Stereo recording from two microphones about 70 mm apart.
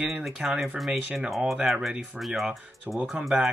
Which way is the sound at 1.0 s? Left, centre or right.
Centre.